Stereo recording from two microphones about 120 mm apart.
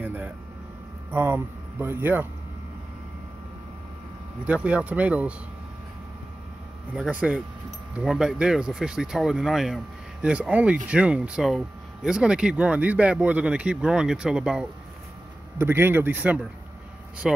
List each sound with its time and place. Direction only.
0.0 s air conditioning: 15° right (ahead or behind)
1.1 s speech: 15° right (ahead or behind)
4.5 s speech: 10° right (ahead or behind)
7.0 s speech: 10° right (ahead or behind)
15.5 s speech: 20° right (ahead or behind)